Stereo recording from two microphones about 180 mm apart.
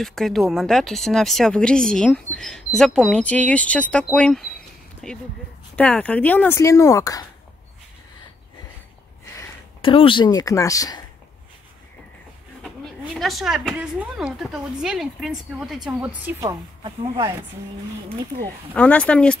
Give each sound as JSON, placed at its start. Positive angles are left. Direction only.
{"t": 0.0, "sound": "speech", "side_deg": 0}
{"t": 9.8, "sound": "speech", "side_deg": 30}
{"t": 12.8, "sound": "speech", "side_deg": 0}
{"t": 16.4, "sound": "speech", "side_deg": -25}
{"t": 18.8, "sound": "speech", "side_deg": 5}